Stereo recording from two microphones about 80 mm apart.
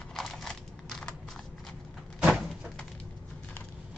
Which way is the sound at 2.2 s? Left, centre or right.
Centre.